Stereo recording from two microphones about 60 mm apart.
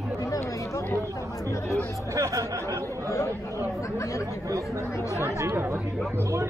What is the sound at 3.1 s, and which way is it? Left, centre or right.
Chatter, left.